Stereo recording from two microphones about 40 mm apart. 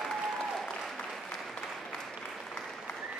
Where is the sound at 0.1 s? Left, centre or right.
Centre.